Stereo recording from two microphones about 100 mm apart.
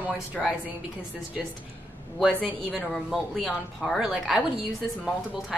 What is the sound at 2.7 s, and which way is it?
Speech, centre (ahead or behind).